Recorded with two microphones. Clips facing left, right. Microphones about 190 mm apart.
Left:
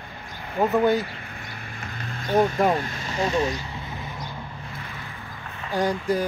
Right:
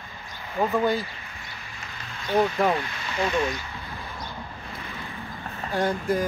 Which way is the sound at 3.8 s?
20° left (ahead or behind).